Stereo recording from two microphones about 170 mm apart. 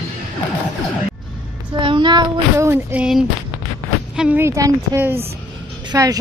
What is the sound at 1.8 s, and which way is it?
Child singing, 30° right (ahead or behind).